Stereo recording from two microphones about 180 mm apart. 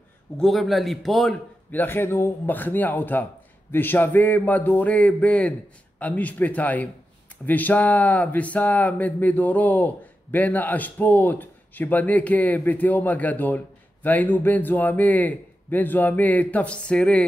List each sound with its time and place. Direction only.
0.4 s speech: centre (ahead or behind)